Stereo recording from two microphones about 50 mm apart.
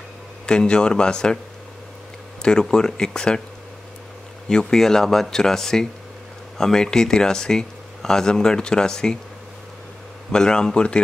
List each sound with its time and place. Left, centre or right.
0.5 s speech: centre
2.7 s speech: centre
4.5 s speech: centre
10.3 s speech: centre